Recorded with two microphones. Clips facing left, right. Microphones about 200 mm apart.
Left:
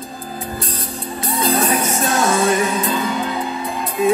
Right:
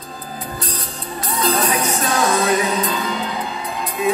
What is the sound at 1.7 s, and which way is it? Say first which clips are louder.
Music: left 1 dB; 45° left (ahead or behind).